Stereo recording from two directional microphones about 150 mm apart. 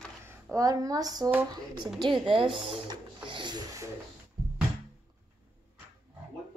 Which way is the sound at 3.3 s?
30° right (ahead or behind).